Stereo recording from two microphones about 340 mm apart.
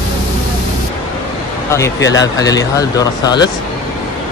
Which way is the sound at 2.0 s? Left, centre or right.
Left.